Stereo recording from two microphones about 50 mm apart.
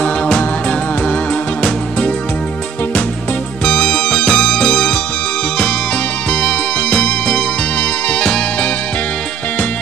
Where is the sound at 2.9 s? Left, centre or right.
Left.